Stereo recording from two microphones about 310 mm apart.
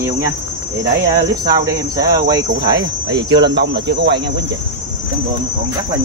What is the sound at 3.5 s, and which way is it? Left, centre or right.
Speech, right.